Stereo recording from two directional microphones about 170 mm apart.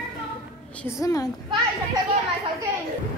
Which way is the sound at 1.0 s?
20° left (ahead or behind).